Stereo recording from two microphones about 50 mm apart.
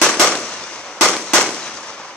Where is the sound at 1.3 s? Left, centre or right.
Centre.